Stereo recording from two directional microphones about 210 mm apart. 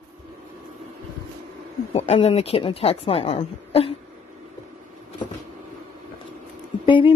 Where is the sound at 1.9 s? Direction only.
30° left (ahead or behind).